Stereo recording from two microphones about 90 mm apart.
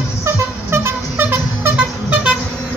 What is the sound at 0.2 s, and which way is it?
Vehicle, 25° right (ahead or behind).